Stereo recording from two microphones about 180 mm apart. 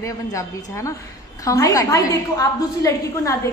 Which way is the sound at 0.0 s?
20° left (ahead or behind).